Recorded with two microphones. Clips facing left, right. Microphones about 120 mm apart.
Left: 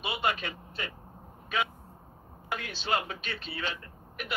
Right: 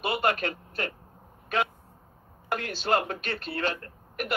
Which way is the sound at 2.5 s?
50° right (ahead or behind).